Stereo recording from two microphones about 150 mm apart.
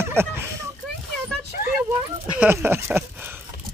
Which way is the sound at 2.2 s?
10° right (ahead or behind).